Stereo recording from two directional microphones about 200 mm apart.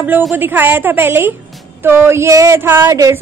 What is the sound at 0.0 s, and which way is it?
A woman's voice, 10° right (ahead or behind).